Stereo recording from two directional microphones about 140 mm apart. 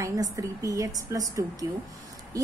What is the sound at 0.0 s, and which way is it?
A woman's voice, 20° right (ahead or behind).